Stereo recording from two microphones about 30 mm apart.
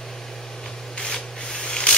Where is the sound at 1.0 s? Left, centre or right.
Left.